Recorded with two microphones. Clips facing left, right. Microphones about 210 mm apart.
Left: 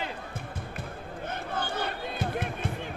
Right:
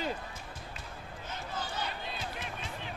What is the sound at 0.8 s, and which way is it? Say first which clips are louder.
Basketball bounce: left 8 dB; 55° left (ahead or behind).